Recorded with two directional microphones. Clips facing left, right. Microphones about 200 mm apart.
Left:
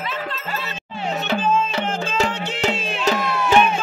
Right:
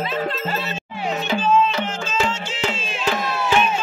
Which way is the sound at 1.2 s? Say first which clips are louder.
Right 2 dB; 55° left (ahead or behind).